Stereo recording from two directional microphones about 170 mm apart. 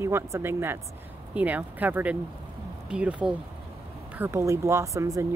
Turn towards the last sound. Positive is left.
turn(degrees=-20)  # may be behind; listen again after turning